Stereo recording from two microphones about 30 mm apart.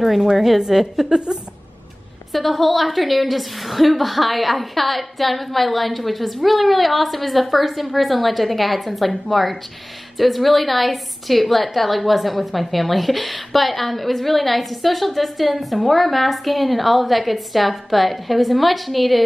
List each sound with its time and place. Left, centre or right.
0.0 s a woman's voice: centre
1.1 s a woman's voice: right
2.3 s a woman's voice: centre